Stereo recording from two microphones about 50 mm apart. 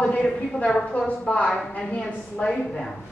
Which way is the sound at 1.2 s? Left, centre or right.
Left.